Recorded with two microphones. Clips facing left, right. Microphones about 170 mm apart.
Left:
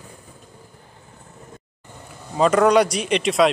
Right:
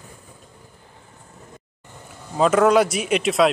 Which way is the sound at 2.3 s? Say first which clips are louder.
Even; centre (ahead or behind).